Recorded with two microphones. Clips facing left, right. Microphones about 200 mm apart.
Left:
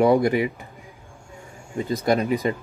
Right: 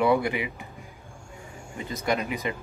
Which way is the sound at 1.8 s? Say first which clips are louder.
Left 7 dB; 35° left (ahead or behind).